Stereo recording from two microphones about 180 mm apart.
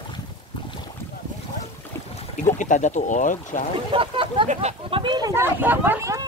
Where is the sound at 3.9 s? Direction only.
30° right (ahead or behind).